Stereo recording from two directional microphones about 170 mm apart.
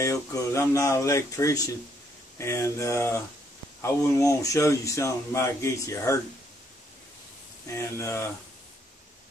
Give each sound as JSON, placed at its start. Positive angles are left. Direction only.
{"t": 0.0, "sound": "speech", "side_deg": 15}
{"t": 7.7, "sound": "speech", "side_deg": 15}